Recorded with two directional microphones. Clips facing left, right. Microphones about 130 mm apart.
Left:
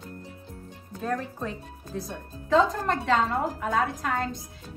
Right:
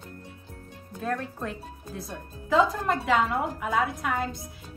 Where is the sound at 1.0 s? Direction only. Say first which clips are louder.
Left 1 dB; centre (ahead or behind).